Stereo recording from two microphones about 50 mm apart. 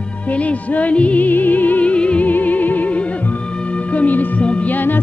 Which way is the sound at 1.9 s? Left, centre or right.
Left.